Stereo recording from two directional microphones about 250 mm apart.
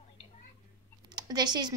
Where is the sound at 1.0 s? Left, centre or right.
Centre.